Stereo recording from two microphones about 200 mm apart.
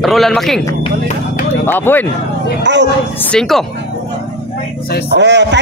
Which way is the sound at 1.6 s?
10° left (ahead or behind).